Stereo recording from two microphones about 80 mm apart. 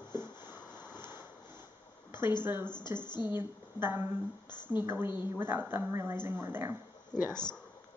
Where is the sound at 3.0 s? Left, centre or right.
Left.